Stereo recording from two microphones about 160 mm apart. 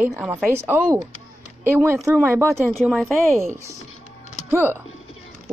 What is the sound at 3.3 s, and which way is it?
A woman's voice, 15° right (ahead or behind).